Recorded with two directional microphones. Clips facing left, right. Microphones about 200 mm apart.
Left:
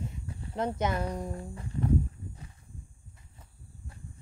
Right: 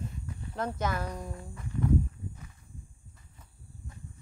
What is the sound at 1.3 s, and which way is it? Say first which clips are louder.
Music: left 2 dB; 30° left (ahead or behind).